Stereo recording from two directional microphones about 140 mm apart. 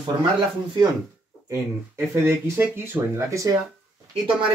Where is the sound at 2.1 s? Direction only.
20° right (ahead or behind).